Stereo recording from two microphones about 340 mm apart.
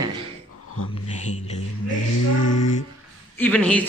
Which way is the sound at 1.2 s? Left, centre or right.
Centre.